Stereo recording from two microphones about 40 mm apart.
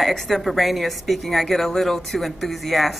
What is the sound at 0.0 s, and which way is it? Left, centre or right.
Speech, centre.